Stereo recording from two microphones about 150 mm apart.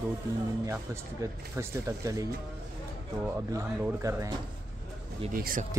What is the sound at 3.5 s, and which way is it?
Speech, 15° right (ahead or behind).